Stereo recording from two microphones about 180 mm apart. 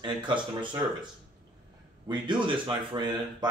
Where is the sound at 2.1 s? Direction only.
25° right (ahead or behind).